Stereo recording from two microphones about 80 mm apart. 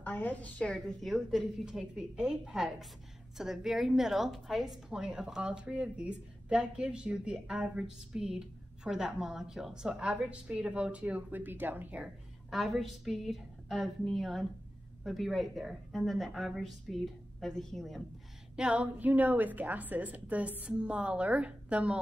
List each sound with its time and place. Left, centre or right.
0.0 s a woman's voice: left
0.7 s a woman's voice: centre; by 12.1 s right
12.4 s a woman's voice: centre
18.6 s a woman's voice: centre